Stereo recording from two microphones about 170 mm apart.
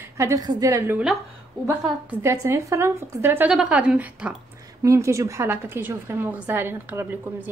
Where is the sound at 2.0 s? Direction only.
15° right (ahead or behind).